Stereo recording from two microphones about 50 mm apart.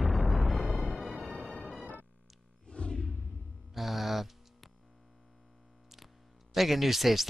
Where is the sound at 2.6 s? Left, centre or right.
Centre.